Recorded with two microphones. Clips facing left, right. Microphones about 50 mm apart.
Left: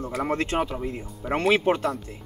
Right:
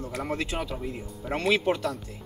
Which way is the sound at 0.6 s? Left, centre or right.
Left.